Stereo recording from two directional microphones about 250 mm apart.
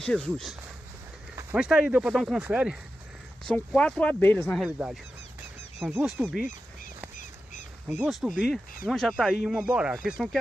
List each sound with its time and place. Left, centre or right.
0.0 s speech: centre
4.6 s speech: centre
7.2 s duck: left
8.0 s speech: centre